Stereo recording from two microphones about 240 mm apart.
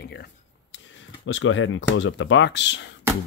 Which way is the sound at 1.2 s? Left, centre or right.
Left.